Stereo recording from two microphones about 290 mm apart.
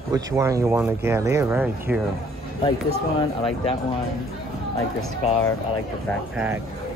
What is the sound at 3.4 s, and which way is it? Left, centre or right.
Speech, centre.